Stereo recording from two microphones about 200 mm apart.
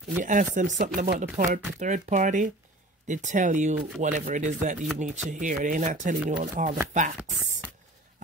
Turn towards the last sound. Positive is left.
turn(degrees=-40)  # may be behind; listen again after turning